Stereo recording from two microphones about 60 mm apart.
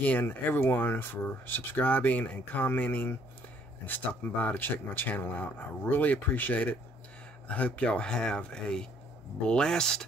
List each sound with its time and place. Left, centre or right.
0.0 s speech: left; by 10.0 s centre